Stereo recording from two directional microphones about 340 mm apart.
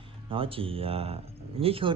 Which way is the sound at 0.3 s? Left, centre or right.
Centre.